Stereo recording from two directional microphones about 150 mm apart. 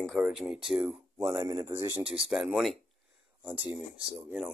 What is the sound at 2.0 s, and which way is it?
Speech, 40° right (ahead or behind).